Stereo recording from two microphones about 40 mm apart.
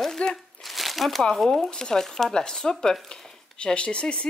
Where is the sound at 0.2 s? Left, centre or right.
Left.